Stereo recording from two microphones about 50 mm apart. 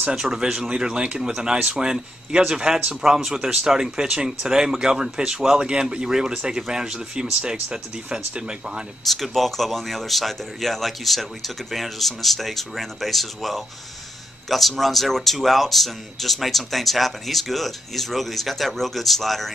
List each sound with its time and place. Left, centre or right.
0.1 s a man's voice: centre
9.0 s speech: centre